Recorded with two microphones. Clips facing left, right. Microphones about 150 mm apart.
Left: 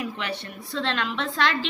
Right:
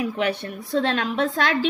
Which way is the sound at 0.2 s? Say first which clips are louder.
Right 8 dB; 50° right (ahead or behind).